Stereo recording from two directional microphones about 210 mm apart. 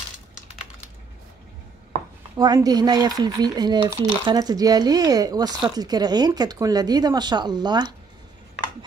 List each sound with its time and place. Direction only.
2.3 s speech: 20° right (ahead or behind)